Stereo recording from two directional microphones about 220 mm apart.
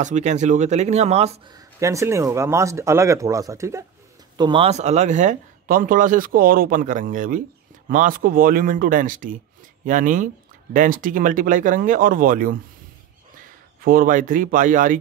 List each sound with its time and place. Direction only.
0.0 s speech: 30° right (ahead or behind)
1.5 s speech: 15° right (ahead or behind); by 12.5 s 40° right (ahead or behind)
13.7 s speech: 40° right (ahead or behind)